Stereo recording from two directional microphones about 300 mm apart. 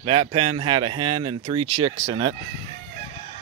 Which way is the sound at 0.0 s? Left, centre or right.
Centre.